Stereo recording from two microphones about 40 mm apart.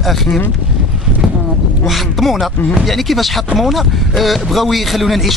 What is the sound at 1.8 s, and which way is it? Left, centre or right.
Speech, centre.